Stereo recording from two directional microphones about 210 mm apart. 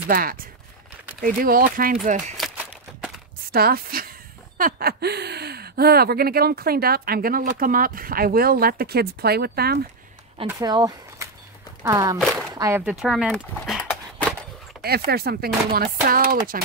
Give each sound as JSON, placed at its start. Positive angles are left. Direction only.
{"t": 0.1, "sound": "speech", "side_deg": -40}
{"t": 2.3, "sound": "a sound", "side_deg": -5}
{"t": 3.5, "sound": "speech", "side_deg": -45}
{"t": 10.5, "sound": "speech", "side_deg": -15}
{"t": 12.2, "sound": "speech", "side_deg": 0}
{"t": 12.5, "sound": "speech", "side_deg": -15}
{"t": 15.0, "sound": "speech", "side_deg": -45}